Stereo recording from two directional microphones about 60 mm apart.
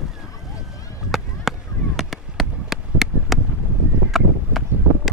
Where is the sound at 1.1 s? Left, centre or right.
Centre.